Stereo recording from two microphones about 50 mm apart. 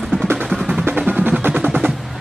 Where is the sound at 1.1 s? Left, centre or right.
Right.